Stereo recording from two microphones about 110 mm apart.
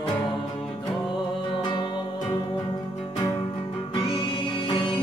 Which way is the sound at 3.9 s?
55° left (ahead or behind).